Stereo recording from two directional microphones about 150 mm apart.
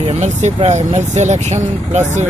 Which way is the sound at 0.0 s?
45° right (ahead or behind).